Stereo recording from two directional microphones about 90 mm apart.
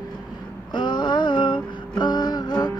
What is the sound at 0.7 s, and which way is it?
Music, 55° left (ahead or behind).